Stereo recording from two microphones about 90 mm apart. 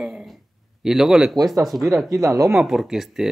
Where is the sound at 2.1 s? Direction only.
40° right (ahead or behind).